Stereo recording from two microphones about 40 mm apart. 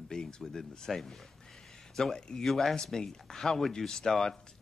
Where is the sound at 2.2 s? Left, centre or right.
Centre.